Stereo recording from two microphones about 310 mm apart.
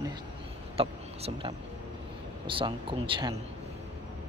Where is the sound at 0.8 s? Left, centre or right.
Centre.